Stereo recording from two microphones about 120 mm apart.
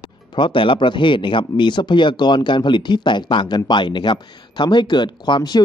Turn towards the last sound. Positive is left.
turn(degrees=35)  # may be behind; listen again after turning